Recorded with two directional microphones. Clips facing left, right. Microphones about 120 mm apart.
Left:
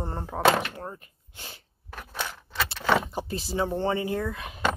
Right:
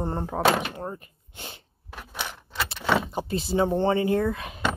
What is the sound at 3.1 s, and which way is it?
Speech, 20° right (ahead or behind).